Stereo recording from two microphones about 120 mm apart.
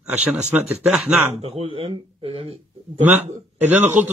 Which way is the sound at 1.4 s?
55° right (ahead or behind).